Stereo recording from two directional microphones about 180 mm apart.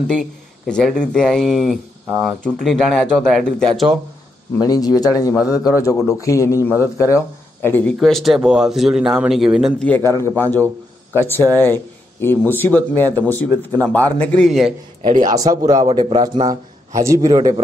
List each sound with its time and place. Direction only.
0.7 s a man's voice: 5° left (ahead or behind)
4.6 s speech: 20° left (ahead or behind)
8.0 s a man's voice: centre (ahead or behind)
9.8 s speech: 10° left (ahead or behind)
15.0 s speech: 45° right (ahead or behind)
15.2 s a man's voice: 20° right (ahead or behind)